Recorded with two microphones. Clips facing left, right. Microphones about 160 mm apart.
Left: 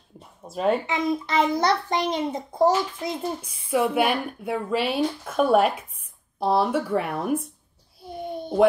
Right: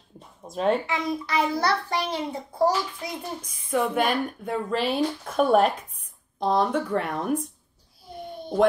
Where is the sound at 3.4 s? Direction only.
10° left (ahead or behind).